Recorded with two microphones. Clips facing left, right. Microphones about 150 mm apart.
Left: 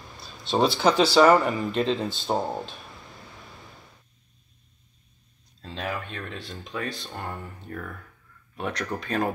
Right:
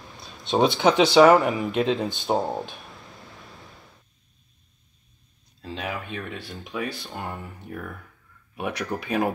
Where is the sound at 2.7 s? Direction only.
Centre (ahead or behind).